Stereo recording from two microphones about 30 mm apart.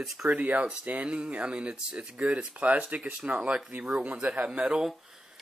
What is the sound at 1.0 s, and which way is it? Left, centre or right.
Speech, right.